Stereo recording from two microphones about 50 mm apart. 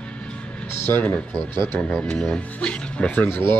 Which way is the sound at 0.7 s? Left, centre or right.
Left.